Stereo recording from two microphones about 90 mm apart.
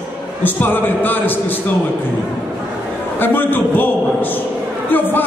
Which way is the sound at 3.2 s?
20° left (ahead or behind).